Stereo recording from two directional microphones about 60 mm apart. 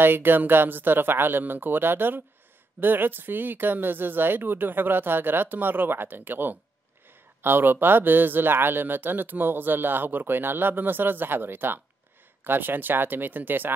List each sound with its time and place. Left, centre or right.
0.0 s speech: right